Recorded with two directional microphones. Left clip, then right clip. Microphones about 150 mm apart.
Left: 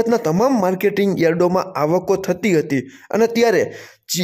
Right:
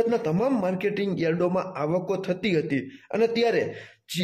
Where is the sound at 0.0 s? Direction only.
50° left (ahead or behind).